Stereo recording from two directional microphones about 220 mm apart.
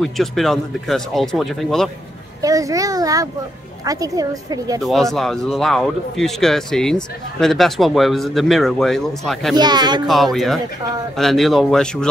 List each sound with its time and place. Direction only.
0.0 s speech: centre (ahead or behind)
2.4 s a woman's voice: 15° right (ahead or behind)
4.8 s speech: centre (ahead or behind)
9.6 s speech: 20° right (ahead or behind)
10.0 s speech: centre (ahead or behind)